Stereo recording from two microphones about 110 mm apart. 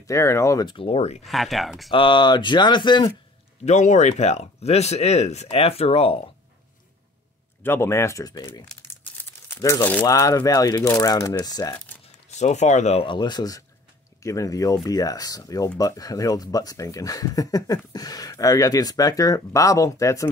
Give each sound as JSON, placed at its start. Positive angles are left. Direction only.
{"t": 0.0, "sound": "speech", "side_deg": 25}
{"t": 0.7, "sound": "speech", "side_deg": 60}
{"t": 1.2, "sound": "speech", "side_deg": 0}
{"t": 1.9, "sound": "speech", "side_deg": 45}
{"t": 3.6, "sound": "speech", "side_deg": 90}
{"t": 7.6, "sound": "speech", "side_deg": 20}
{"t": 9.6, "sound": "speech", "side_deg": 30}
{"t": 12.4, "sound": "speech", "side_deg": 90}
{"t": 13.0, "sound": "speech", "side_deg": 45}